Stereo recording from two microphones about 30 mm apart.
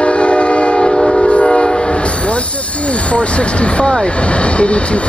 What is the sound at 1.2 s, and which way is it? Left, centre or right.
Train, left.